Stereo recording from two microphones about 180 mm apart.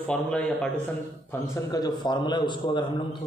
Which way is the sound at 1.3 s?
20° left (ahead or behind).